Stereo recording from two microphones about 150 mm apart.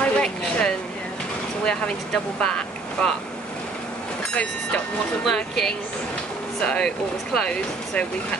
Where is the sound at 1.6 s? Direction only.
5° left (ahead or behind).